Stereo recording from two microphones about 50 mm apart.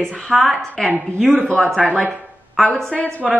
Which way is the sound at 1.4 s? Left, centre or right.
Left.